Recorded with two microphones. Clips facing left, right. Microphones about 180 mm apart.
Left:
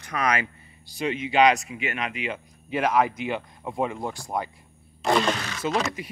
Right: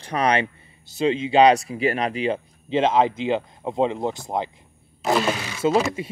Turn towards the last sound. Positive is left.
turn(degrees=-10)  # may be behind; listen again after turning